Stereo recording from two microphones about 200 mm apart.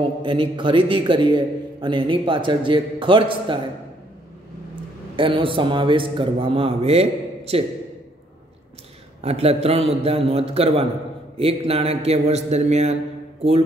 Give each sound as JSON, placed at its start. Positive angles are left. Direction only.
{"t": 0.2, "sound": "a man's voice", "side_deg": -25}
{"t": 5.1, "sound": "a man's voice", "side_deg": -25}
{"t": 9.2, "sound": "a man's voice", "side_deg": -30}